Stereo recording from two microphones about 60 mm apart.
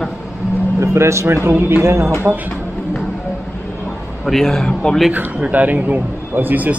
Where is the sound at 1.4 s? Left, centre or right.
Right.